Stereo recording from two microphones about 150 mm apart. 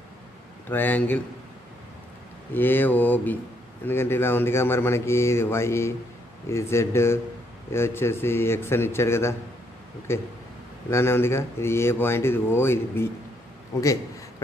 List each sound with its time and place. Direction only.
0.7 s speech: 10° left (ahead or behind)
2.5 s a man's voice: 15° left (ahead or behind)